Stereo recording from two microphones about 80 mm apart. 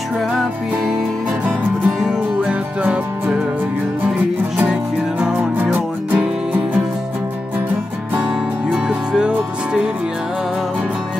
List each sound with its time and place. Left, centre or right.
2.0 s music: centre
5.2 s music: centre
8.7 s music: centre